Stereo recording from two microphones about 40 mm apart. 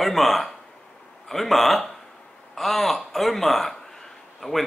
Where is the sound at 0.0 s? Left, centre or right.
Centre.